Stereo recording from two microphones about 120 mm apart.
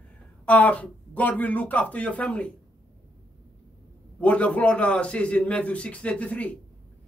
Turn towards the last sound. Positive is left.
turn(degrees=10)  # may be behind; listen again after turning